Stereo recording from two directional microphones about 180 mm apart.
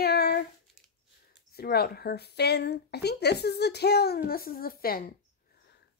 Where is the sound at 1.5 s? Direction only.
60° left (ahead or behind).